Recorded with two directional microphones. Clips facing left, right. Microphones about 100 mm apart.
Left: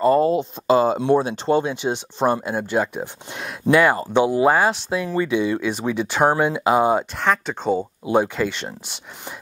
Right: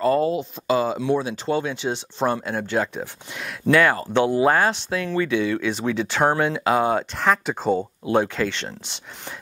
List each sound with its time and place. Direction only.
0.0 s speech: 30° left (ahead or behind)
1.6 s speech: 15° left (ahead or behind)
7.2 s speech: centre (ahead or behind)
8.0 s speech: 10° left (ahead or behind)